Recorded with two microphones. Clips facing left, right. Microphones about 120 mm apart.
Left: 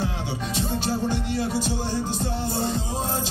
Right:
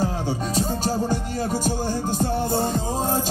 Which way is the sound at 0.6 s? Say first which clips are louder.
Right 1 dB; 40° right (ahead or behind).